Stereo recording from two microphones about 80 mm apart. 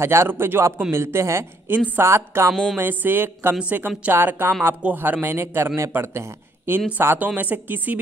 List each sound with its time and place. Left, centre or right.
0.0 s speech: right
2.5 s a sound: centre
2.8 s a man's voice: right